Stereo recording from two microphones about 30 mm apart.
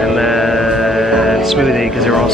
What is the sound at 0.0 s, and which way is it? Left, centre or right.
Music, centre.